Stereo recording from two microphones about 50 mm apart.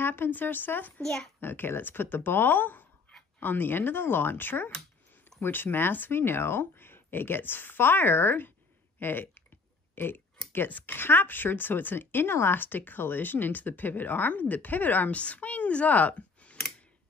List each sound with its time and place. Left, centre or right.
0.0 s speech: left
1.0 s a child's voice: centre
1.4 s speech: left